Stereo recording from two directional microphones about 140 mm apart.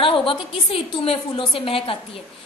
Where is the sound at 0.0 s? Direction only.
40° left (ahead or behind).